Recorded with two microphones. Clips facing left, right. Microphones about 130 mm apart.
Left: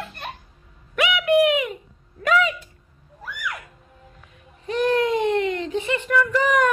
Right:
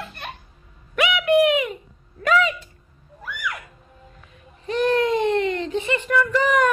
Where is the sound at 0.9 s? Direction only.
Centre (ahead or behind).